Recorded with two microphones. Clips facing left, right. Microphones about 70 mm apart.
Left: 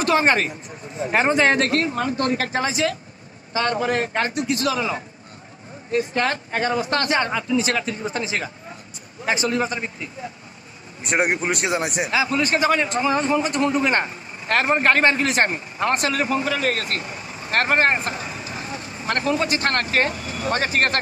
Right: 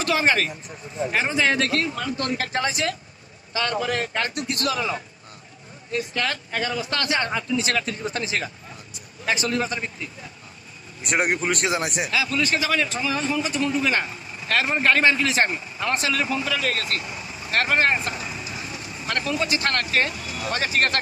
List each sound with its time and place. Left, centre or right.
0.0 s speech: left
1.1 s a man's voice: left
11.0 s speech: centre
12.1 s a man's voice: left